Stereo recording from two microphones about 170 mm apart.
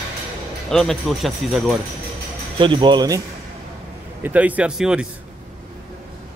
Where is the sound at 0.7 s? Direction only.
Centre (ahead or behind).